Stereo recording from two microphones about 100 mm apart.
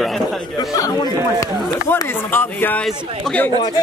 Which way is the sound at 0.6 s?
35° left (ahead or behind).